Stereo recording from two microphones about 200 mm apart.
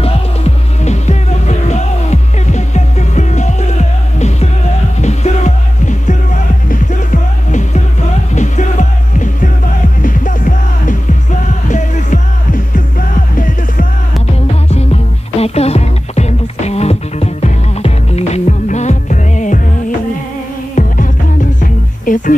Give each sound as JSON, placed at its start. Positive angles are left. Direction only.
{"t": 0.0, "sound": "music", "side_deg": 35}
{"t": 14.7, "sound": "music", "side_deg": 30}
{"t": 20.7, "sound": "music", "side_deg": 40}